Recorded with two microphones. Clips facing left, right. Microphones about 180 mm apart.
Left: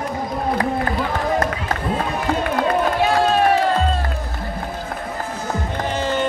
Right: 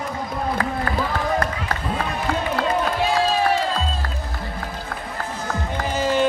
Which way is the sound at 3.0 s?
60° left (ahead or behind).